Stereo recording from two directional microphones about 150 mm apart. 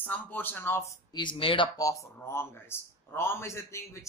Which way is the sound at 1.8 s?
20° left (ahead or behind).